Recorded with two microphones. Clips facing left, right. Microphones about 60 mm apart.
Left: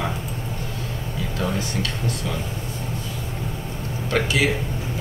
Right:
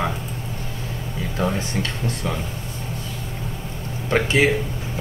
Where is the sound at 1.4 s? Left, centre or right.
Right.